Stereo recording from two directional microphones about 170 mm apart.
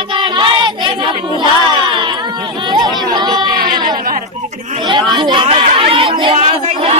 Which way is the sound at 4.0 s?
55° right (ahead or behind).